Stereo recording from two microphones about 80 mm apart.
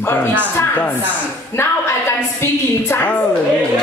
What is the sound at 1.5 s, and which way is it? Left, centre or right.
Speech, left.